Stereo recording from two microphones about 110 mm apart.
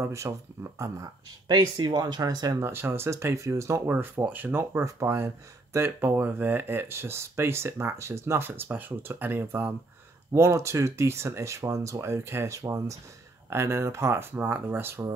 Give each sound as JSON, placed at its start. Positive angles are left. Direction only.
{"t": 0.0, "sound": "speech", "side_deg": -25}
{"t": 2.6, "sound": "speech", "side_deg": -20}
{"t": 3.9, "sound": "speech", "side_deg": -15}